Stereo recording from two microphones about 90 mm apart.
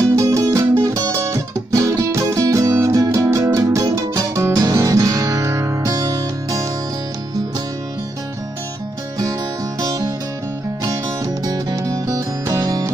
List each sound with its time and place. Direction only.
0.1 s music: 35° right (ahead or behind)
9.8 s music: 40° right (ahead or behind)
11.4 s music: 40° right (ahead or behind)